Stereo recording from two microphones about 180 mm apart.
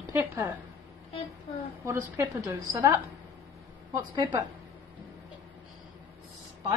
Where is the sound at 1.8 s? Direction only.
15° right (ahead or behind).